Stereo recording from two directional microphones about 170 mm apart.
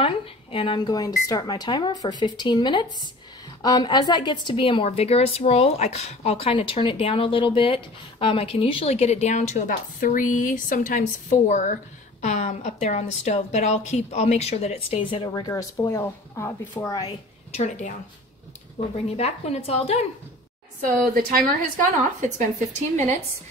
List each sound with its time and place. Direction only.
0.0 s a woman's voice: 35° left (ahead or behind)
17.5 s a woman's voice: 45° left (ahead or behind)
19.0 s a woman's voice: 35° left (ahead or behind)
21.0 s a woman's voice: 55° right (ahead or behind)
22.7 s a woman's voice: 45° right (ahead or behind)